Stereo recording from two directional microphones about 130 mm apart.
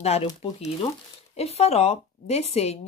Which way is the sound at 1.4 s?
55° left (ahead or behind).